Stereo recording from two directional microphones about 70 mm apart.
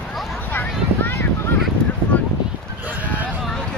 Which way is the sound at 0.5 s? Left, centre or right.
Left.